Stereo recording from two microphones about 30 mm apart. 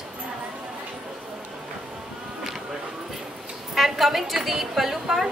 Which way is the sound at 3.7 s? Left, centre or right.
Centre.